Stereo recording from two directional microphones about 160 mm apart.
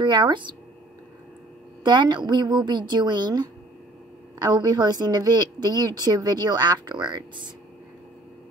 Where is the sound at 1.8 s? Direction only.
30° right (ahead or behind).